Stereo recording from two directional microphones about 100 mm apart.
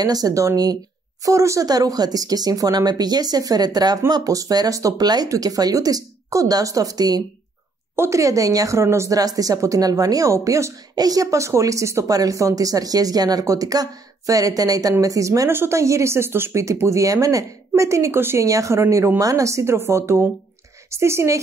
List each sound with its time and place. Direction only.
0.0 s a woman's voice: 40° right (ahead or behind)
7.9 s a woman's voice: 30° right (ahead or behind)